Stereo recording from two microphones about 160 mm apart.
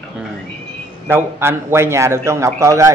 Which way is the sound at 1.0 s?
15° right (ahead or behind).